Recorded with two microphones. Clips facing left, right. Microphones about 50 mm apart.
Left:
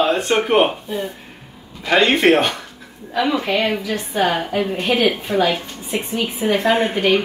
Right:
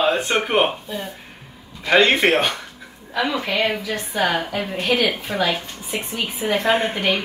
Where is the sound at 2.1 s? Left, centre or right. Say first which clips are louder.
Left 3 dB; centre.